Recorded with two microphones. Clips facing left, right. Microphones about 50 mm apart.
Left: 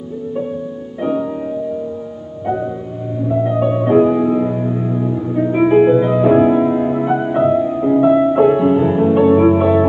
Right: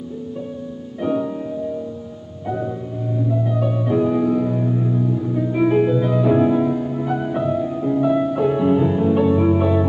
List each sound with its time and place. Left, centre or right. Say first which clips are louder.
1.0 s music: left 2 dB; centre
2.4 s music: left 5 dB; centre
3.3 s music: left 8 dB; left
4.1 s music: left 3 dB; centre
6.8 s music: left 7 dB; left
7.1 s music: left 6 dB; left